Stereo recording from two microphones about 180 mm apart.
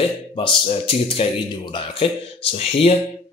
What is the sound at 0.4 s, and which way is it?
Speech, 30° left (ahead or behind).